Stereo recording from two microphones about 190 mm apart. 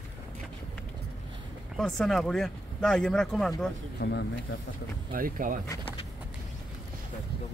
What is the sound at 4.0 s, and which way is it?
Speech, 65° left (ahead or behind).